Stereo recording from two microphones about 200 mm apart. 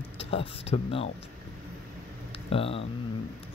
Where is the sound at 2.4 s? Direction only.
30° left (ahead or behind).